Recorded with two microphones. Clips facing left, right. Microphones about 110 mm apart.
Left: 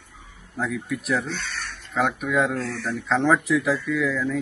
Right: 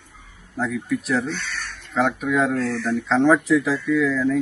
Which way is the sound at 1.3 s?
25° left (ahead or behind).